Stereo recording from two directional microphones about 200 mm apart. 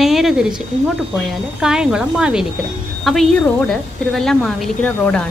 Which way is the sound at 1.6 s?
5° right (ahead or behind).